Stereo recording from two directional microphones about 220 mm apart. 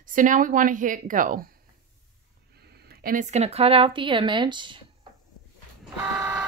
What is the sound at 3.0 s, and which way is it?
Speech, 35° right (ahead or behind).